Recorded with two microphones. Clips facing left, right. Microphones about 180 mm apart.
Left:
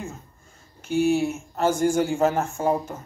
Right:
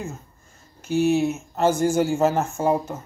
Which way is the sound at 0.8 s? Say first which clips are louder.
Right 1 dB; 40° right (ahead or behind).